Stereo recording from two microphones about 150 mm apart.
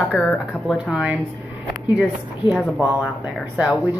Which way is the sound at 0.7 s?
5° right (ahead or behind).